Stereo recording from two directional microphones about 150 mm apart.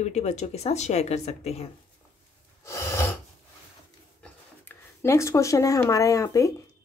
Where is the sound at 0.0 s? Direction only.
45° left (ahead or behind).